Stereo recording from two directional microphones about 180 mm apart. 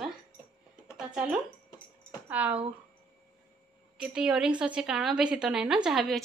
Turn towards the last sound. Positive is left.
turn(degrees=0)  # may be behind; listen again after turning